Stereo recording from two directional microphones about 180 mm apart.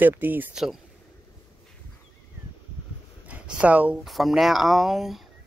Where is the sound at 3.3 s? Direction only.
10° right (ahead or behind).